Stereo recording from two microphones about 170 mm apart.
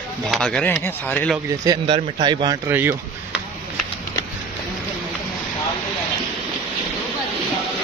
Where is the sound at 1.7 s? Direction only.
25° right (ahead or behind).